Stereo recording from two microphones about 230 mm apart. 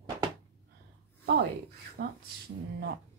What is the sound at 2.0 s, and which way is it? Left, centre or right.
Speech, right.